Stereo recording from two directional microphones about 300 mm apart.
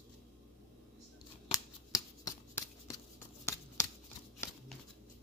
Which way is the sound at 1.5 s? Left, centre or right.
Centre.